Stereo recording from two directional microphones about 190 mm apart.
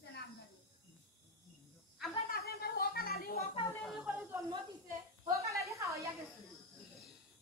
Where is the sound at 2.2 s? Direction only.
55° left (ahead or behind).